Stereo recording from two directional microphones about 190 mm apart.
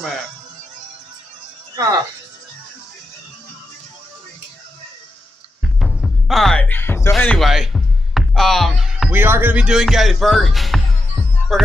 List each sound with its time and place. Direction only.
1.8 s speech: 20° right (ahead or behind)
5.8 s music: centre (ahead or behind)
7.2 s speech: centre (ahead or behind)